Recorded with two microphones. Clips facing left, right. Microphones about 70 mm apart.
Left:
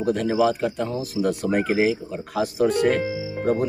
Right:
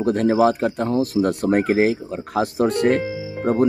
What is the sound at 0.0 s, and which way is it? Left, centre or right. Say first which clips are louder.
Speech: right 4 dB; right.